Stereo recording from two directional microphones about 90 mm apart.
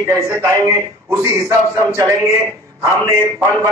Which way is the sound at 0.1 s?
30° right (ahead or behind).